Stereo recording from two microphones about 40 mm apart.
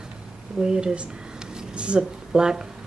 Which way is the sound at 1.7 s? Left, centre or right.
Right.